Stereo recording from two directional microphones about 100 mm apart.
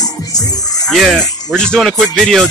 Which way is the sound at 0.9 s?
Centre (ahead or behind).